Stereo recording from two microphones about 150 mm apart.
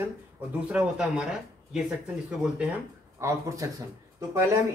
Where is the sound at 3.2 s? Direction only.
20° right (ahead or behind).